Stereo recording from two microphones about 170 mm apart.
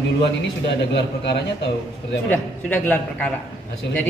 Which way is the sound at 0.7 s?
90° left.